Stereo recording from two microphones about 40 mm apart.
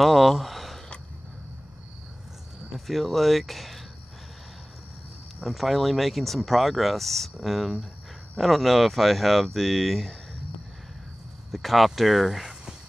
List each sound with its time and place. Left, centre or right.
0.0 s a sound: centre
2.7 s speech: centre
5.5 s speech: centre
11.5 s speech: centre